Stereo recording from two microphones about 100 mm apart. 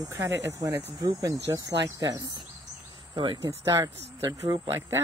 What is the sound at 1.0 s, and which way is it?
Speech, 35° right (ahead or behind).